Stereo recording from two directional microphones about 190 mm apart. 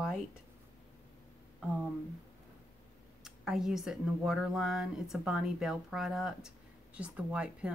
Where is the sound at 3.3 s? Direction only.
5° right (ahead or behind).